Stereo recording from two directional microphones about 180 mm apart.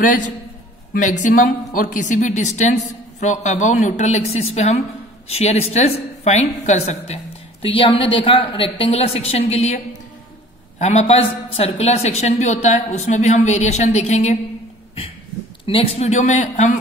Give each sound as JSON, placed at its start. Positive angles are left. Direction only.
{"t": 0.0, "sound": "a man's voice", "side_deg": 45}
{"t": 10.8, "sound": "a woman's voice", "side_deg": 40}
{"t": 15.6, "sound": "a woman's voice", "side_deg": 30}